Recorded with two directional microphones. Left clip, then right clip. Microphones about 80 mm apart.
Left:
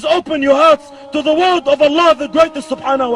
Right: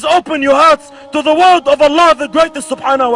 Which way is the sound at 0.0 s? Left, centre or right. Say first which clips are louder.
Right 3 dB; right.